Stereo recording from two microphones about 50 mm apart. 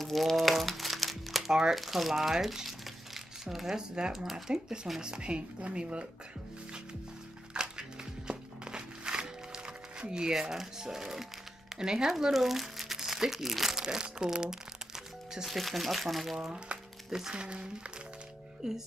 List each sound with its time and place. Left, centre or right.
0.0 s crumpling: centre
1.5 s speech: centre
7.5 s music: centre
11.8 s speech: centre
15.3 s speech: centre
16.3 s crumpling: centre
17.3 s speech: centre